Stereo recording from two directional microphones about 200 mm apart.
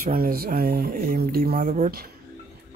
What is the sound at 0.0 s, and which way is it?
Speech, 45° right (ahead or behind).